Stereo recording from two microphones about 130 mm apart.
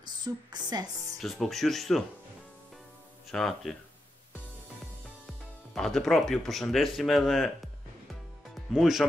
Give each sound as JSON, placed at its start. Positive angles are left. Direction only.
{"t": 0.2, "sound": "speech", "side_deg": -30}
{"t": 1.2, "sound": "speech", "side_deg": 0}
{"t": 3.3, "sound": "speech", "side_deg": 0}
{"t": 5.8, "sound": "speech", "side_deg": 0}
{"t": 8.7, "sound": "speech", "side_deg": 0}